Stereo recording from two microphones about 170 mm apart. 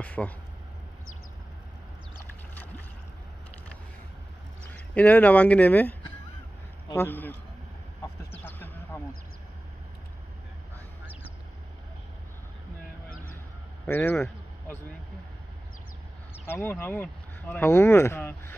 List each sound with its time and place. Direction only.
0.0 s speech: 10° left (ahead or behind)
4.7 s speech: 10° left (ahead or behind)
8.0 s a sound: 10° left (ahead or behind)
13.1 s music: 55° left (ahead or behind)
13.8 s speech: 15° left (ahead or behind)
16.4 s speech: 10° left (ahead or behind)